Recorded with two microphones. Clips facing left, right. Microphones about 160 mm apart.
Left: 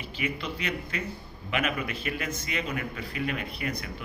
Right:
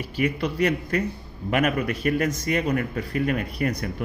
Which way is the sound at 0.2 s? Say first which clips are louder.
Right 10 dB; 50° right (ahead or behind).